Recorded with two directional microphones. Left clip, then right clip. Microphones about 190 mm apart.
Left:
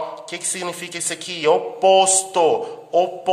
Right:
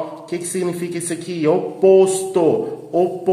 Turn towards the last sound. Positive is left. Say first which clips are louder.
# even
turn(degrees=25)  # may be behind; listen again after turning